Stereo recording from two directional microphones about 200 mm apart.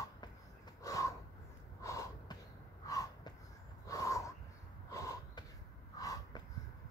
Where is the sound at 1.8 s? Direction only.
15° left (ahead or behind).